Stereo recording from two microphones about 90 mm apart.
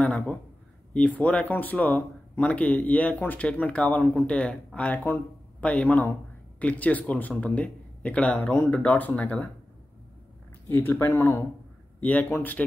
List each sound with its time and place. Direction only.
0.0 s a sound: 15° left (ahead or behind)
0.9 s speech: 15° left (ahead or behind)
10.7 s speech: 20° left (ahead or behind)